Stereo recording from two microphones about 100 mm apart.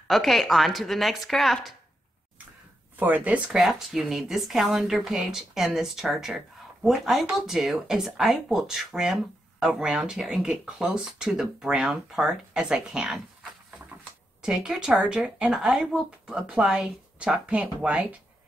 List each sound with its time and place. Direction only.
0.1 s speech: centre (ahead or behind)
3.0 s speech: 15° right (ahead or behind)
3.4 s speech: 5° right (ahead or behind)